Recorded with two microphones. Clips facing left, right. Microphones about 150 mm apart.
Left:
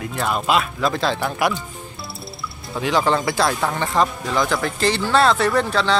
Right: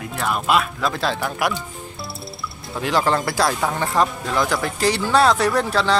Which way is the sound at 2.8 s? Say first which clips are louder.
Left 1 dB; centre (ahead or behind).